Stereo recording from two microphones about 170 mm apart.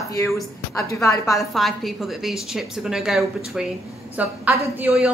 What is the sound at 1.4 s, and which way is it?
A woman's voice, centre (ahead or behind).